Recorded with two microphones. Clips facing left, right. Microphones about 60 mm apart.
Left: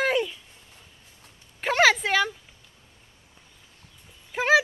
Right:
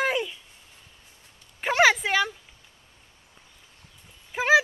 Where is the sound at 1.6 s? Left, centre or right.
Centre.